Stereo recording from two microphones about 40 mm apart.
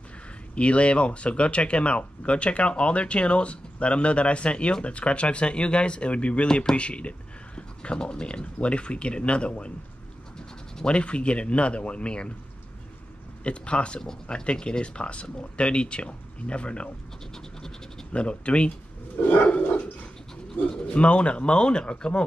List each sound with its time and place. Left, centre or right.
0.6 s speech: left
10.9 s speech: left
13.4 s speech: left
18.1 s speech: left
19.3 s dog: left
20.7 s speech: centre
21.0 s speech: left